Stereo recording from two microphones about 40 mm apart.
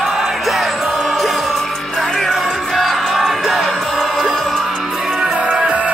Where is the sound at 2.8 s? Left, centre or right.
Centre.